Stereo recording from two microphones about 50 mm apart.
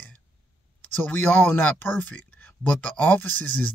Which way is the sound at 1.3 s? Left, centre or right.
Left.